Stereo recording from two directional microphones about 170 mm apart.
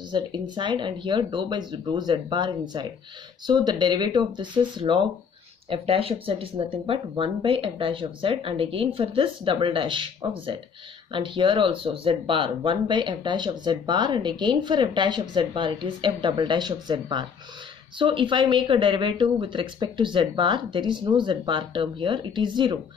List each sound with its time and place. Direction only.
0.1 s speech: 25° right (ahead or behind)